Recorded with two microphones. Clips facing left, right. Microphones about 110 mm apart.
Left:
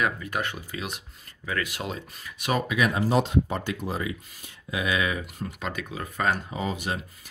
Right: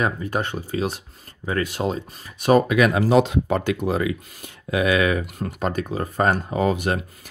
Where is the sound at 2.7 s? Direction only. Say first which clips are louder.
Right 7 dB; 75° right (ahead or behind).